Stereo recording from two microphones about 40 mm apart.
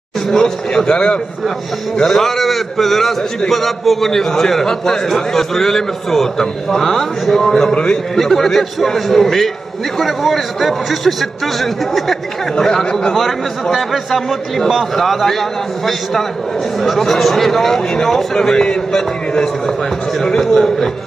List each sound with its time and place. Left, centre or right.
0.3 s a man's voice: centre
2.0 s a man's voice: centre
7.7 s a man's voice: left
8.2 s a man's voice: centre